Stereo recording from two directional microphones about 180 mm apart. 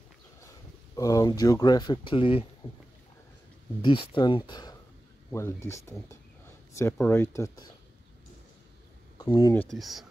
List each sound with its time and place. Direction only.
0.9 s speech: 20° left (ahead or behind)
3.8 s speech: 25° left (ahead or behind)
9.2 s speech: 20° left (ahead or behind)
9.6 s speech: centre (ahead or behind)